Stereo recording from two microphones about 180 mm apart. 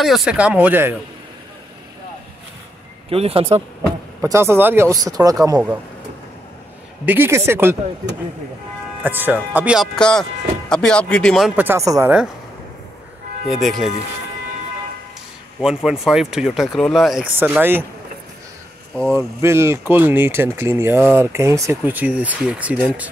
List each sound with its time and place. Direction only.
0.0 s speech: centre (ahead or behind)
3.1 s speech: 35° right (ahead or behind)
4.2 s speech: 15° right (ahead or behind)
7.1 s speech: 15° right (ahead or behind)
9.0 s speech: 10° right (ahead or behind)
9.9 s speech: 5° left (ahead or behind); by 12.3 s 10° right (ahead or behind)
13.5 s speech: centre (ahead or behind)
15.6 s speech: 5° right (ahead or behind)
19.1 s speech: 15° right (ahead or behind)